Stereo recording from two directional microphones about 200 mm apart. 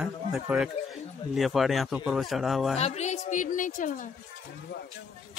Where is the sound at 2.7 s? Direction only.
35° left (ahead or behind).